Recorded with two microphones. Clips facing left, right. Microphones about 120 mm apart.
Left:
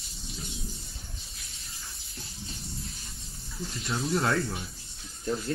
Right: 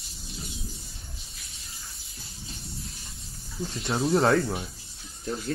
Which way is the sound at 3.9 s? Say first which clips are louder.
Right 6 dB; 30° right (ahead or behind).